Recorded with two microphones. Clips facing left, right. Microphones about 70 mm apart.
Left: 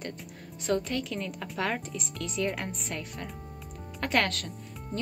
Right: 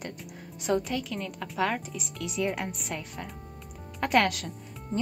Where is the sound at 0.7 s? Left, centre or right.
Centre.